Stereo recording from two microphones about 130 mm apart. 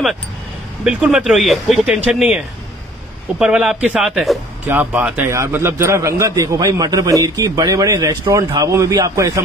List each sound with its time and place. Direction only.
0.8 s speech: 5° right (ahead or behind)
4.6 s a man's voice: 15° right (ahead or behind)